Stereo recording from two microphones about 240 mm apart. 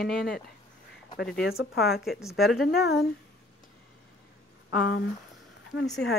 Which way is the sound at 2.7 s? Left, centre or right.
Left.